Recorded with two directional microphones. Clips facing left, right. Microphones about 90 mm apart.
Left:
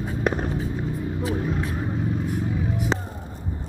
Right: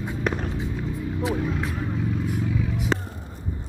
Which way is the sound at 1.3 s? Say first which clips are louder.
Left 1 dB; 35° left (ahead or behind).